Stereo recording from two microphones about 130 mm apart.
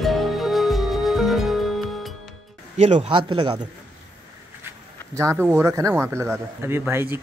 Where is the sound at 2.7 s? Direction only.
55° right (ahead or behind).